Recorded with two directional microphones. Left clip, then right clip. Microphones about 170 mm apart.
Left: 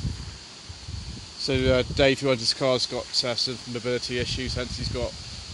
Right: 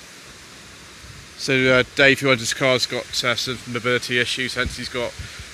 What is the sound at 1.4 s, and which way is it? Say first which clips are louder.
Speech: right 6 dB; centre (ahead or behind).